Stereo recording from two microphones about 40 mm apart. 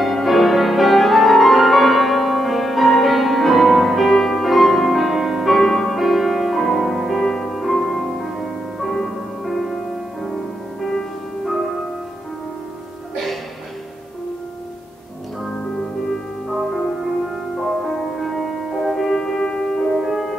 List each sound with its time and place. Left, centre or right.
0.0 s music: centre
15.7 s music: centre
20.0 s music: centre